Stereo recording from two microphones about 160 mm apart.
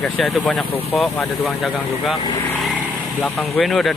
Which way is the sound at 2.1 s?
25° left (ahead or behind).